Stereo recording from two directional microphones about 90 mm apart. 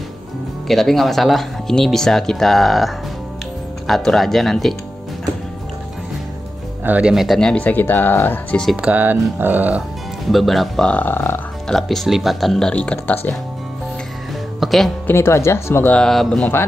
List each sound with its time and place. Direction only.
0.7 s speech: centre (ahead or behind)
6.8 s speech: 15° right (ahead or behind)
7.3 s speech: 10° left (ahead or behind)
8.8 s speech: 20° right (ahead or behind)
10.3 s speech: centre (ahead or behind)
10.9 s speech: 20° left (ahead or behind)
11.6 s speech: 5° left (ahead or behind)
12.7 s speech: 15° left (ahead or behind)
14.6 s speech: centre (ahead or behind)
15.0 s speech: 30° left (ahead or behind)
15.9 s speech: 5° left (ahead or behind)